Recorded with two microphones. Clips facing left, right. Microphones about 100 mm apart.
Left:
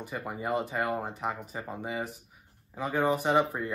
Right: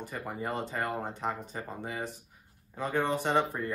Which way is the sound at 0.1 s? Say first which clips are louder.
Left 4 dB; 10° left (ahead or behind).